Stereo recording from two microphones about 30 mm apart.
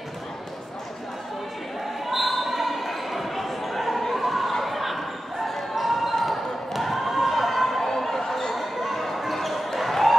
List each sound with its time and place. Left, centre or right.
2.0 s basketball bounce: centre
7.8 s a sound: centre
8.5 s basketball bounce: centre